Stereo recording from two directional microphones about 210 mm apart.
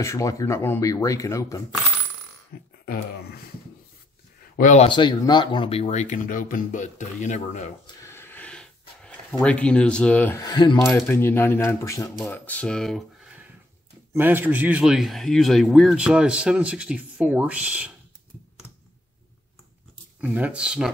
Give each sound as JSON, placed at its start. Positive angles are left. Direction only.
{"t": 0.0, "sound": "speech", "side_deg": 15}
{"t": 2.8, "sound": "speech", "side_deg": 45}
{"t": 4.6, "sound": "speech", "side_deg": 35}
{"t": 4.8, "sound": "speech", "side_deg": 20}
{"t": 7.8, "sound": "a sound", "side_deg": 15}
{"t": 10.4, "sound": "mechanisms", "side_deg": 20}
{"t": 10.9, "sound": "a man's voice", "side_deg": 10}
{"t": 14.1, "sound": "a man's voice", "side_deg": -10}
{"t": 20.2, "sound": "a man's voice", "side_deg": -5}